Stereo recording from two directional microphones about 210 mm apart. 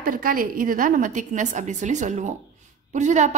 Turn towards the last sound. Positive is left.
turn(degrees=-35)  # may be behind; listen again after turning